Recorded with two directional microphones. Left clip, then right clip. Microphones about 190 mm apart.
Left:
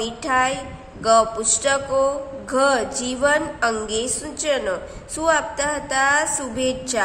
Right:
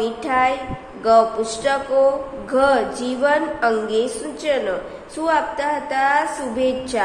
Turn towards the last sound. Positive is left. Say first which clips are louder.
# right 2 dB
turn(degrees=20)  # may be behind; listen again after turning